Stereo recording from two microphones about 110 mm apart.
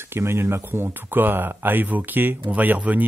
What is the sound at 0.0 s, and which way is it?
Speech, 25° right (ahead or behind).